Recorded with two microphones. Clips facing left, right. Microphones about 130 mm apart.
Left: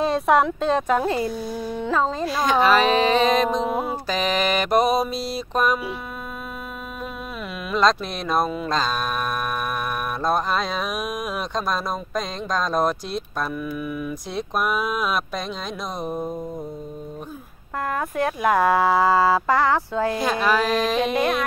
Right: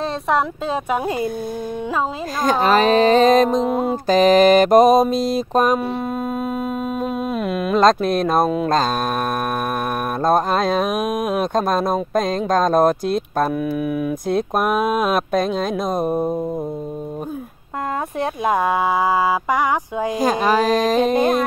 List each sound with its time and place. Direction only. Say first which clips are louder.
0.0 s speech: left 2 dB; centre (ahead or behind); by 1.3 s 15° right (ahead or behind)
2.4 s mantra: right 2 dB; 45° right (ahead or behind)
7.6 s mantra: right 5 dB; 45° right (ahead or behind)
10.2 s mantra: right 6 dB; 45° right (ahead or behind)
18.2 s speech: even; 20° right (ahead or behind)
20.2 s speech: right 7 dB; 40° right (ahead or behind)